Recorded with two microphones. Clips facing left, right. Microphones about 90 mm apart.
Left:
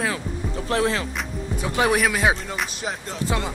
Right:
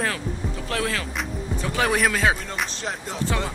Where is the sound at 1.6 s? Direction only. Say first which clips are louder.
Left 2 dB; 15° left (ahead or behind).